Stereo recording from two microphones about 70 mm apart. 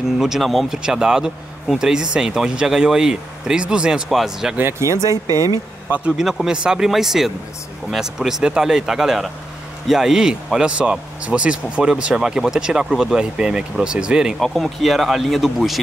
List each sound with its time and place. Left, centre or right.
0.2 s speech: centre
4.6 s speech: right
5.9 s speech: right
6.1 s speech: centre
14.4 s speech: centre